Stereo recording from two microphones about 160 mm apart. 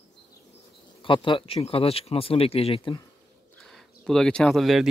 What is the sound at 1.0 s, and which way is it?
Speech, 30° left (ahead or behind).